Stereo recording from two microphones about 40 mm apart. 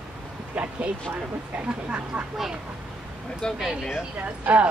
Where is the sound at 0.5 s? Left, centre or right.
Right.